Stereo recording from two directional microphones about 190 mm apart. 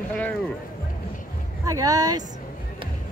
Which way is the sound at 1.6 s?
20° right (ahead or behind).